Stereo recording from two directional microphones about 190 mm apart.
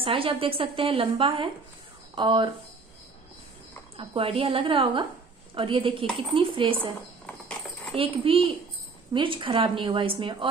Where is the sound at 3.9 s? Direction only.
30° right (ahead or behind).